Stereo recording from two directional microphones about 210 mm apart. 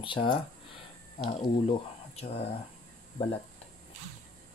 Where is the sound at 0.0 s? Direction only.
25° left (ahead or behind).